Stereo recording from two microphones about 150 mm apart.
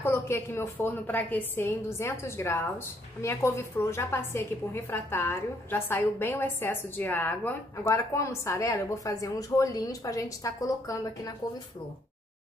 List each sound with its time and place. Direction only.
0.0 s a woman's voice: 15° left (ahead or behind)